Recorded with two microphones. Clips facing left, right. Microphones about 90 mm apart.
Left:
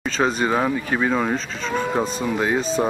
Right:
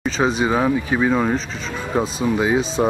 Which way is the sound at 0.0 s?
5° right (ahead or behind).